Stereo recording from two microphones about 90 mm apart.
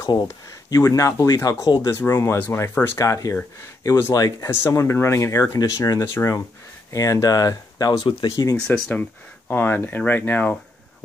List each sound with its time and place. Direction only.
0.0 s speech: 40° left (ahead or behind)
2.3 s speech: 20° left (ahead or behind)
3.0 s speech: 35° left (ahead or behind)
4.5 s speech: 30° left (ahead or behind); by 8.5 s 45° left (ahead or behind)
8.5 s speech: 10° left (ahead or behind)
9.5 s speech: 20° left (ahead or behind)